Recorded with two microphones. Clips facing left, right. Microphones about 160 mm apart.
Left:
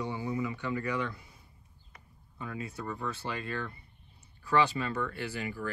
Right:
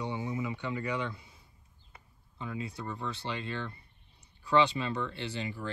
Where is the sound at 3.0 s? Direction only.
25° right (ahead or behind).